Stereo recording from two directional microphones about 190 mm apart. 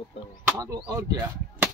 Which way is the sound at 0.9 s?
20° right (ahead or behind).